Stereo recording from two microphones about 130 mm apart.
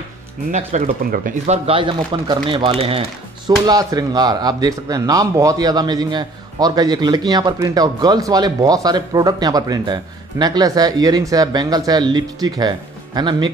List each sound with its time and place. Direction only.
0.5 s speech: 60° right (ahead or behind)
1.8 s speech: 40° right (ahead or behind)
3.6 s speech: 30° right (ahead or behind)